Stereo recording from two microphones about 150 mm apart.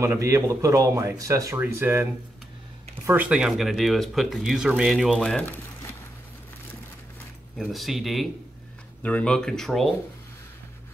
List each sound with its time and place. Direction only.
0.0 s speech: 20° right (ahead or behind)
3.1 s speech: 10° right (ahead or behind); by 5.5 s 5° left (ahead or behind)
7.5 s speech: centre (ahead or behind)